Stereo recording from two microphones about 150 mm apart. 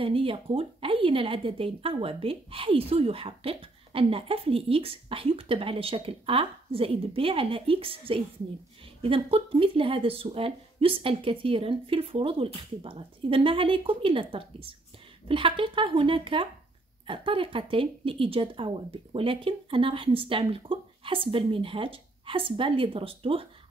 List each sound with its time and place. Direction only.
0.0 s a woman's voice: 35° right (ahead or behind)